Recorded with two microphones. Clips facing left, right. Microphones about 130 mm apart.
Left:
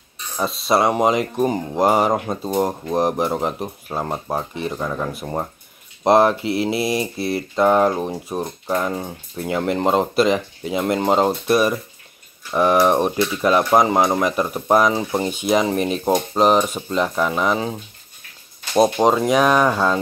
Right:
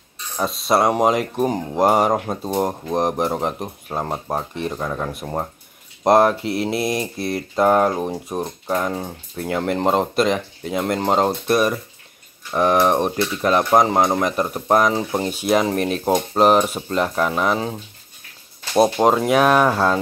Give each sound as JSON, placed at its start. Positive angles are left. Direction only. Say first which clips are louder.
{"t": 0.4, "sound": "speech", "louder": "even", "side_deg": 0}